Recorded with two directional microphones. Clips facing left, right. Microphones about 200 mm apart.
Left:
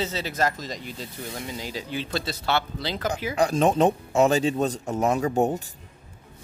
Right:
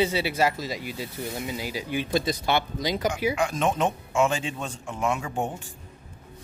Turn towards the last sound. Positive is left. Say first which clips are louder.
# left 8 dB
turn(degrees=40)  # may be behind; listen again after turning